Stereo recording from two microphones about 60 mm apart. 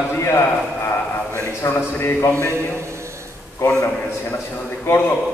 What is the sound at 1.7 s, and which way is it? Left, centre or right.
Speech, left.